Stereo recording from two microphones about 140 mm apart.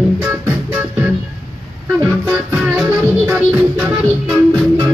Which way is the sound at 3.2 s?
15° right (ahead or behind).